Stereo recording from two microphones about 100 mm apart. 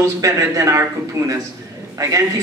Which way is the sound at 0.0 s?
30° right (ahead or behind).